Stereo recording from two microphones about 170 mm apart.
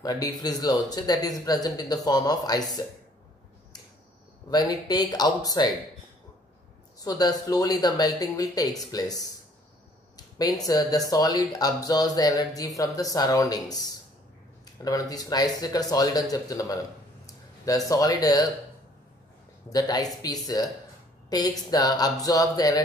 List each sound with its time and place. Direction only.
0.0 s speech: 25° left (ahead or behind)
4.5 s speech: 25° left (ahead or behind)
7.0 s speech: 25° left (ahead or behind)
14.8 s speech: 20° left (ahead or behind)
19.7 s speech: 20° left (ahead or behind)